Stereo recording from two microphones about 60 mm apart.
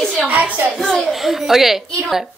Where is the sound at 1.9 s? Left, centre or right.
Centre.